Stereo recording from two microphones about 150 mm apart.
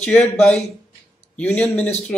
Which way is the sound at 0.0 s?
10° left (ahead or behind).